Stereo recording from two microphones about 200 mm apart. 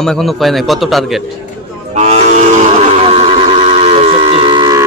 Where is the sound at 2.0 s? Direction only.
35° right (ahead or behind).